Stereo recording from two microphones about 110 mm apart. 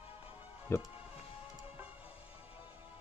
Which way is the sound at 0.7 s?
25° left (ahead or behind).